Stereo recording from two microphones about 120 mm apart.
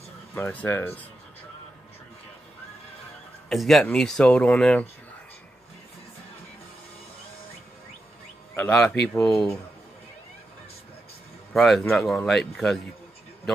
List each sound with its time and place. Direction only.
0.3 s speech: 15° left (ahead or behind)
3.4 s speech: centre (ahead or behind)
8.5 s speech: 10° left (ahead or behind)
11.5 s speech: centre (ahead or behind)